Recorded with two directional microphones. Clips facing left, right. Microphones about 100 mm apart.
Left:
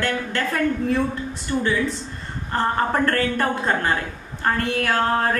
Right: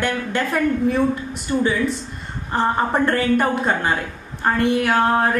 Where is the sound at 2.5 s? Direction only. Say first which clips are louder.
Right 2 dB; 15° right (ahead or behind).